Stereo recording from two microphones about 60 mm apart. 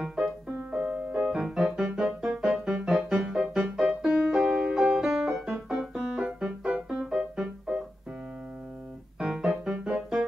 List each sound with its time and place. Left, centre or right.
0.0 s music: centre
0.8 s music: right
1.3 s music: centre
5.7 s keyboard: centre
6.6 s music: centre
9.2 s music: centre